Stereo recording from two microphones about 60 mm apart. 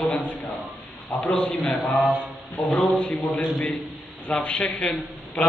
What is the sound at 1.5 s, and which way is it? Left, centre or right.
Speech, centre.